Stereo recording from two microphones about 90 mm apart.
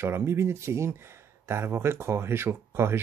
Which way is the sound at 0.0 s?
30° right (ahead or behind).